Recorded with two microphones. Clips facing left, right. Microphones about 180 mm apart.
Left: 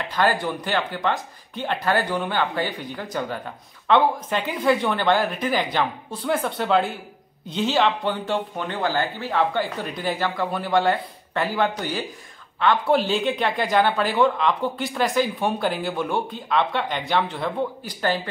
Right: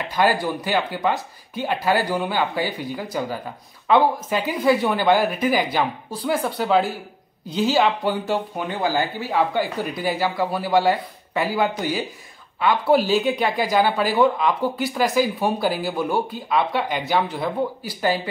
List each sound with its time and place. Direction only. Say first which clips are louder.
0.1 s speech: right 2 dB; 10° right (ahead or behind)